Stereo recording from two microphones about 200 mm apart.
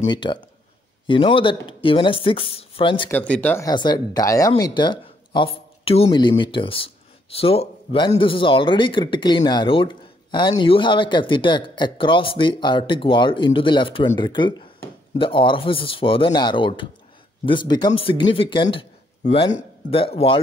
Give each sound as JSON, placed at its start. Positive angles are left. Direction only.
{"t": 0.0, "sound": "speech", "side_deg": 25}
{"t": 3.1, "sound": "speech", "side_deg": 10}